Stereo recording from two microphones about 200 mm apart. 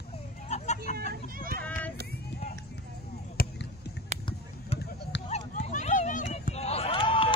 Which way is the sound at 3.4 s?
45° left (ahead or behind).